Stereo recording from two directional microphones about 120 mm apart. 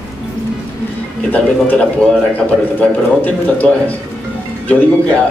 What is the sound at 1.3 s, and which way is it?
A man's voice, 10° left (ahead or behind).